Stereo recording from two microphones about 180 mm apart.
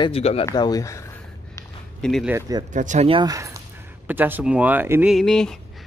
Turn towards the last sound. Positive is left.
turn(degrees=0)  # may be behind; listen again after turning